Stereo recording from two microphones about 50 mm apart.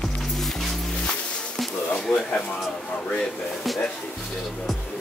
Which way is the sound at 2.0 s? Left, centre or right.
Centre.